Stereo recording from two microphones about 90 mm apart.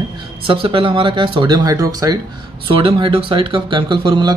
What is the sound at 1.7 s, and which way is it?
Speech, 40° right (ahead or behind).